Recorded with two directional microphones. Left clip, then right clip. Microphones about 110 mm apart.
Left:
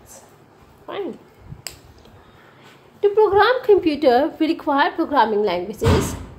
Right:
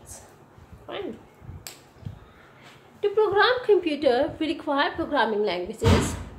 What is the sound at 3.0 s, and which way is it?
A woman's voice, 65° left (ahead or behind).